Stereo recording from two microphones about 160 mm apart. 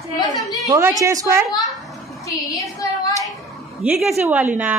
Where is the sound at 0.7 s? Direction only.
20° right (ahead or behind).